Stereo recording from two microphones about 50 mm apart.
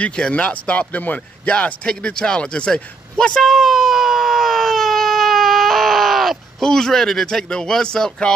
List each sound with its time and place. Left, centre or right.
0.3 s a man's voice: left
3.4 s baby cry: centre
6.6 s speech: centre